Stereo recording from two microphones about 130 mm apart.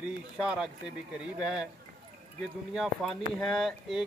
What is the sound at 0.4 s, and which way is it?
Speech, 10° right (ahead or behind).